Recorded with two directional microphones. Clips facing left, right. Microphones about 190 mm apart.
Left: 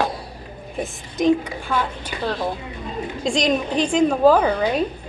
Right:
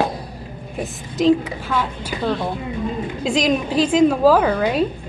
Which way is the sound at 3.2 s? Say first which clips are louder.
Right 1 dB; 5° right (ahead or behind).